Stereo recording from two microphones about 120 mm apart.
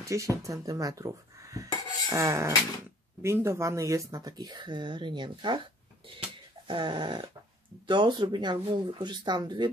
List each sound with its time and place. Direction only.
0.0 s speech: 25° right (ahead or behind); by 5.6 s 40° right (ahead or behind)
6.7 s speech: 40° right (ahead or behind)